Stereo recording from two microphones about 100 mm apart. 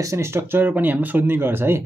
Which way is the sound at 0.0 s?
30° right (ahead or behind).